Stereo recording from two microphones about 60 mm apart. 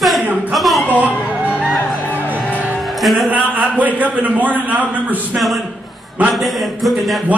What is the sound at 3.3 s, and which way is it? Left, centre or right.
A man's voice, right.